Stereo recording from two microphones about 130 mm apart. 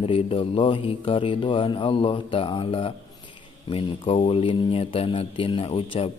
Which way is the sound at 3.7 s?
45° left (ahead or behind).